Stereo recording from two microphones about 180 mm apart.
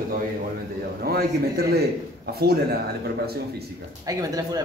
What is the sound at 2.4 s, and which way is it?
Speech, 60° right (ahead or behind).